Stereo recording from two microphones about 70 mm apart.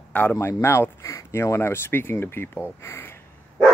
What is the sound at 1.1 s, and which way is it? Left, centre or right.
Speech, left.